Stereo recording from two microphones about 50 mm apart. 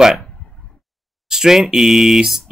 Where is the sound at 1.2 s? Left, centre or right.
Centre.